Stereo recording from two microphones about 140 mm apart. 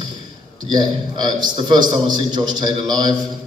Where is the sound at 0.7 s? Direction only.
30° right (ahead or behind).